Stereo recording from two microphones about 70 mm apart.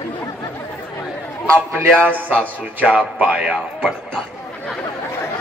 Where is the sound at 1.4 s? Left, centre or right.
Centre.